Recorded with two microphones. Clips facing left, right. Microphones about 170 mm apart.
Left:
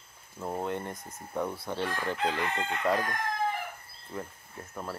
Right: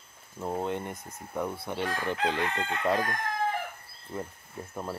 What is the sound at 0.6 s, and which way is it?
Speech, 15° right (ahead or behind).